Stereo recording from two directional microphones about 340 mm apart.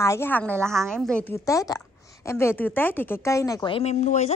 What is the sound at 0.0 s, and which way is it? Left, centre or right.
Speech, centre.